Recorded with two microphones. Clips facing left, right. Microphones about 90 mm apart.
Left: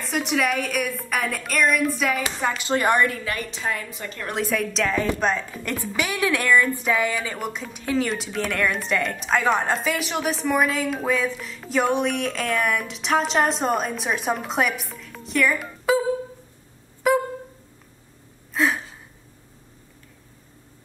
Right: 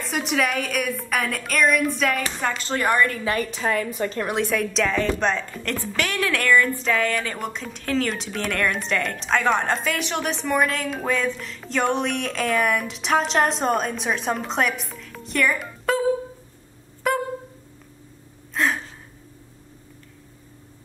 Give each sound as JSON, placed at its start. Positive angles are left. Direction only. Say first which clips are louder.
{"t": 0.0, "sound": "a woman's voice", "louder": "even", "side_deg": 0}
{"t": 2.7, "sound": "a woman's voice", "louder": "left 1 dB", "side_deg": 20}
{"t": 3.3, "sound": "a woman's voice", "louder": "right 5 dB", "side_deg": -30}
{"t": 3.6, "sound": "a woman's voice", "louder": "right 6 dB", "side_deg": -50}
{"t": 4.3, "sound": "a woman's voice", "louder": "right 2 dB", "side_deg": 0}
{"t": 17.0, "sound": "a sound", "louder": "left 4 dB", "side_deg": 0}
{"t": 18.5, "sound": "a sound", "louder": "left 1 dB", "side_deg": 0}